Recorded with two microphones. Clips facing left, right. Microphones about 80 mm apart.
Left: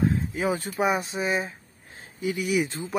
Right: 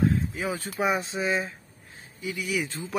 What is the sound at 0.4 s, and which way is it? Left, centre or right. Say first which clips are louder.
Speech: left 4 dB; left.